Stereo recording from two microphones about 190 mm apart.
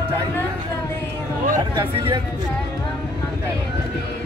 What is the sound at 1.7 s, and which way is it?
Vehicle, 25° right (ahead or behind).